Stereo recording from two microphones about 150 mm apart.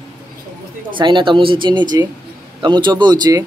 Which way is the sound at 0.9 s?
30° right (ahead or behind).